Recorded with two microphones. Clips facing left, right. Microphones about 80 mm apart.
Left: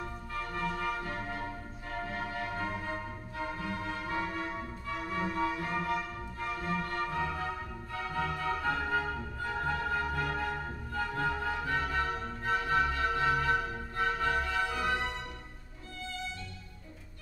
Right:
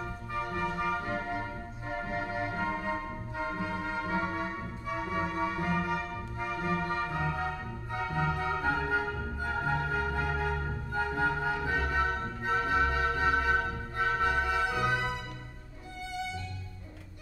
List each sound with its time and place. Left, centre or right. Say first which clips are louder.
0.3 s music: right 3 dB; centre